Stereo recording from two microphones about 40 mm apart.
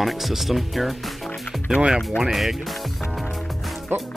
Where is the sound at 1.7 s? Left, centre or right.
Right.